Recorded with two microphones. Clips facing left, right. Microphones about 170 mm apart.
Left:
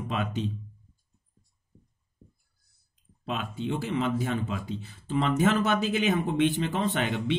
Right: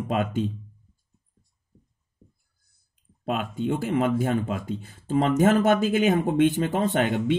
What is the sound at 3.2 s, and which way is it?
Speech, 50° right (ahead or behind).